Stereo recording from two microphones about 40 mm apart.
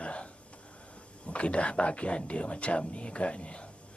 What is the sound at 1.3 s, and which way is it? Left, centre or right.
Speech, left.